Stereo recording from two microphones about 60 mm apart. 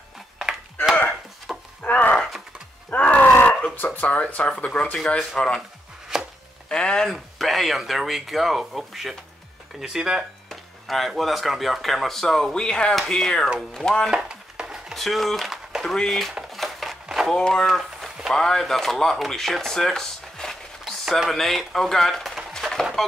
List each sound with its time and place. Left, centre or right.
1.8 s groan: left
2.9 s wail: left
3.8 s speech: left
6.7 s speech: centre
7.1 s speech: centre
10.5 s speech: centre
14.1 s a sound: centre
15.0 s a sound: centre
15.9 s speech: centre
16.5 s a sound: centre
17.3 s speech: centre
21.0 s speech: centre
22.6 s a sound: centre